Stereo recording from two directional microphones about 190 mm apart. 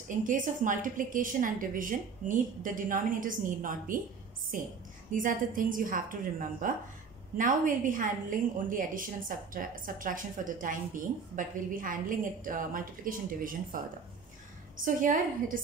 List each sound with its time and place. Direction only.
0.1 s a woman's voice: 45° right (ahead or behind)